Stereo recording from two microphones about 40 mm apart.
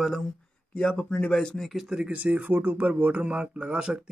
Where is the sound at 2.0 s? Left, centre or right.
Right.